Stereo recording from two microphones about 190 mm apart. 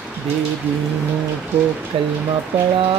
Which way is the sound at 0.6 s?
10° right (ahead or behind).